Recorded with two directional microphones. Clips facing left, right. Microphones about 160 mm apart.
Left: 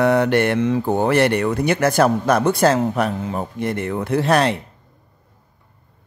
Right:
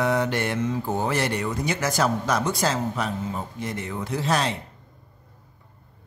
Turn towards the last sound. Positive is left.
turn(degrees=60)  # may be behind; listen again after turning